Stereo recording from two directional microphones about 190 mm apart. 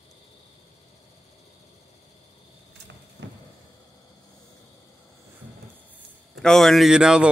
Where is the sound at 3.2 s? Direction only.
70° right (ahead or behind).